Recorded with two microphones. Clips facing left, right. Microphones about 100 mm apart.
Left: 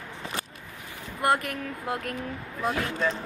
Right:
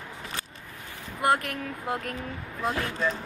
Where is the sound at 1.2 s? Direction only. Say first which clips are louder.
Even; centre (ahead or behind).